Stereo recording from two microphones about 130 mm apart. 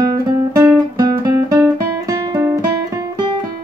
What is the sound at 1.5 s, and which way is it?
Guitar, 25° right (ahead or behind).